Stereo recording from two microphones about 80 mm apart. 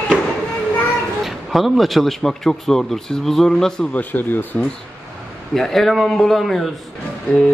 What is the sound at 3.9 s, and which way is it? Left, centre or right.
Speech, left.